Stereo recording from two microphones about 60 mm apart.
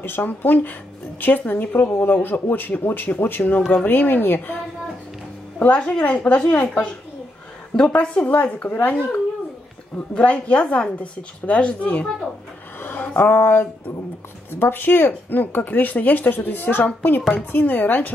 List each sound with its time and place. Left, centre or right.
0.0 s speech: left
5.6 s a woman's voice: centre
8.6 s speech: left
9.9 s a woman's voice: left
12.8 s a woman's voice: left